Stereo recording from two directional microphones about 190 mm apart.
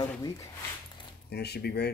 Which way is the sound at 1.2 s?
60° left (ahead or behind).